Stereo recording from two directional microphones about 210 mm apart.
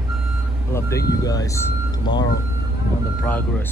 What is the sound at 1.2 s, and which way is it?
Speech, 15° left (ahead or behind).